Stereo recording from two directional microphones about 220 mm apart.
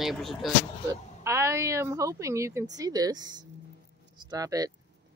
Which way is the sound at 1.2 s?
15° right (ahead or behind).